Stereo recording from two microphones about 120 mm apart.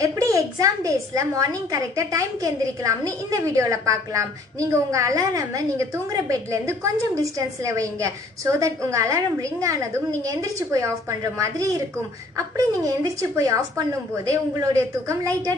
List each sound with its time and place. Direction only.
0.0 s a woman's voice: 25° right (ahead or behind)
14.7 s a woman's voice: 25° right (ahead or behind)